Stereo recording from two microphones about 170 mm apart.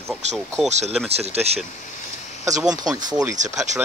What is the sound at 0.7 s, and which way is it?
Speech, 40° right (ahead or behind).